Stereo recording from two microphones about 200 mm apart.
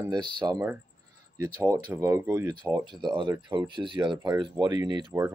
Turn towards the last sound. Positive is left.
turn(degrees=-20)  # may be behind; listen again after turning